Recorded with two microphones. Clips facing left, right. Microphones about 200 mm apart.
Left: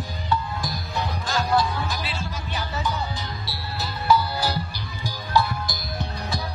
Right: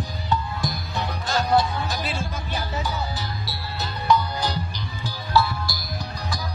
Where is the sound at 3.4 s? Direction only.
Centre (ahead or behind); by 5.8 s 20° left (ahead or behind).